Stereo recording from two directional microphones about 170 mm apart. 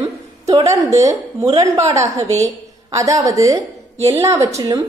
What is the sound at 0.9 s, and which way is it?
A woman's voice, 20° right (ahead or behind).